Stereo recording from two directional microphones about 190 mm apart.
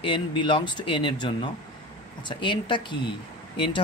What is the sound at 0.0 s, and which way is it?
Speech, 25° left (ahead or behind).